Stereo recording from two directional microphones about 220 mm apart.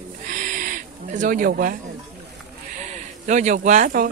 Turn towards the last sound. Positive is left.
turn(degrees=-40)  # may be behind; listen again after turning